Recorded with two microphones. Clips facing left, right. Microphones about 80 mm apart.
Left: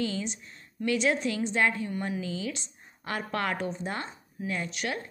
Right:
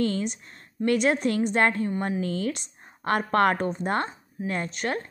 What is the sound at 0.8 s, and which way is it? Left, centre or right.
A woman's voice, right.